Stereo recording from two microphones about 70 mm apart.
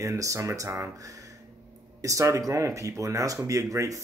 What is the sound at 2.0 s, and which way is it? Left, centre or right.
Speech, right.